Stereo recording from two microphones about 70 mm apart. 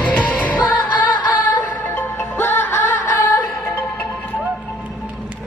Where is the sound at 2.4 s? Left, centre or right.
Left.